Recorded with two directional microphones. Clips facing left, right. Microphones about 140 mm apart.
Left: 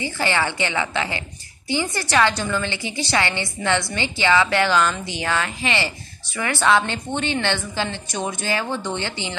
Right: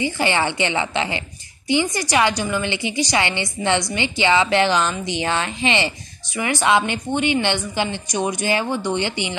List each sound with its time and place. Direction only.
0.0 s a woman's voice: 20° right (ahead or behind)